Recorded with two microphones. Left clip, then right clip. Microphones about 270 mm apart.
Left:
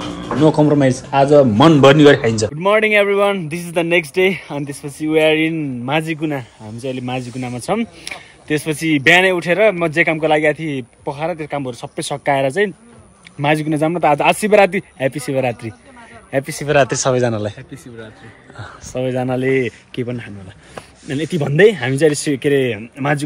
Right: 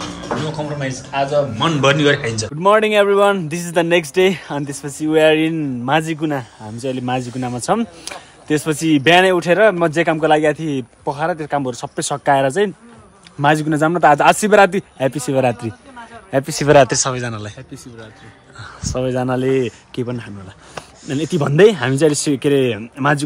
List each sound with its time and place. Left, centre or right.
0.5 s a man's voice: centre
1.6 s a man's voice: centre
2.6 s speech: centre
6.9 s speech: right
7.5 s a man's voice: centre
17.0 s a man's voice: centre
18.9 s speech: centre